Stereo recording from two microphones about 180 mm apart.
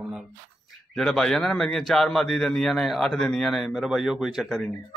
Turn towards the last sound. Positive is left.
turn(degrees=0)  # may be behind; listen again after turning